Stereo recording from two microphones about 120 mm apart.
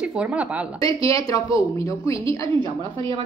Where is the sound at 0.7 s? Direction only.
30° left (ahead or behind).